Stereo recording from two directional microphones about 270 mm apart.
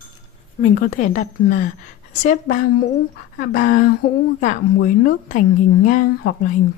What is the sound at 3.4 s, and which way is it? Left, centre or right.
A woman's voice, left.